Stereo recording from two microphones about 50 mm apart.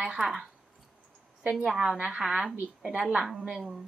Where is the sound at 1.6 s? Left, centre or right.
Centre.